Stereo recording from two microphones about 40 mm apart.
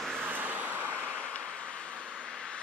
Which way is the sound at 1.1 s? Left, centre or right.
Left.